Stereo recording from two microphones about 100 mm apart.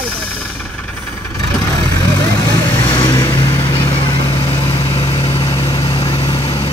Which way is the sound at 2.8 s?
55° left (ahead or behind).